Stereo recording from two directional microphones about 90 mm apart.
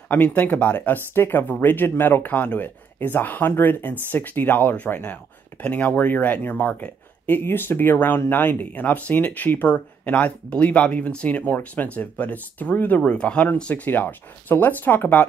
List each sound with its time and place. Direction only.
0.1 s speech: 20° left (ahead or behind)